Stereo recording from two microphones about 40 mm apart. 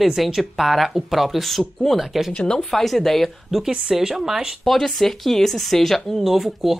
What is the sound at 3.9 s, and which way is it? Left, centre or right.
Speech, centre.